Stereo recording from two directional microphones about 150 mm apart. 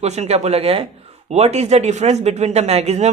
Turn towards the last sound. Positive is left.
turn(degrees=-45)  # may be behind; listen again after turning